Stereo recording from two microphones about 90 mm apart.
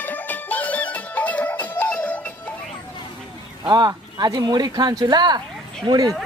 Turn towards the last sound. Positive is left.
turn(degrees=-50)  # may be behind; listen again after turning